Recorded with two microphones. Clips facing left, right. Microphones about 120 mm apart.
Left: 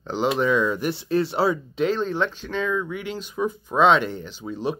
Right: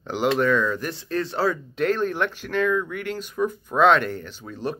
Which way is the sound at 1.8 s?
5° right (ahead or behind).